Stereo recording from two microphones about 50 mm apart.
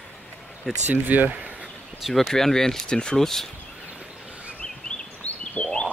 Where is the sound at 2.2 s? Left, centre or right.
Centre.